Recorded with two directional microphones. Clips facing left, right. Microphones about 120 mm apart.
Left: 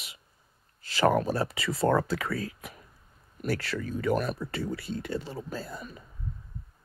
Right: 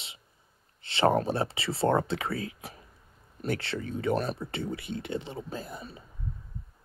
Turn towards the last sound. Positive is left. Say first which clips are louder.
# left 1 dB
turn(degrees=-20)  # may be behind; listen again after turning